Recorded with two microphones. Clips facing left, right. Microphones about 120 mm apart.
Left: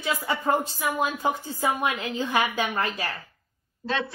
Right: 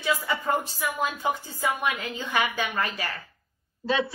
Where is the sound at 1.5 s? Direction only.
15° left (ahead or behind).